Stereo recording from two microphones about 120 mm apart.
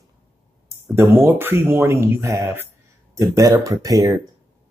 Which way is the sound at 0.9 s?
20° right (ahead or behind).